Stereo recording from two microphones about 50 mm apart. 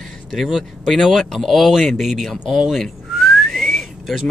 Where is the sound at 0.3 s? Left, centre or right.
Centre.